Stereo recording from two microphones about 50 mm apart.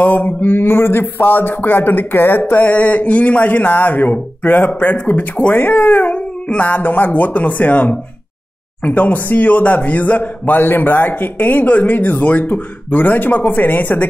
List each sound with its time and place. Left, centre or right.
0.0 s speech: left
6.8 s speech: left